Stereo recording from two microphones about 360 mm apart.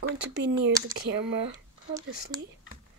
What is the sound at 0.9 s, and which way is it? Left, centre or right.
Speech, centre.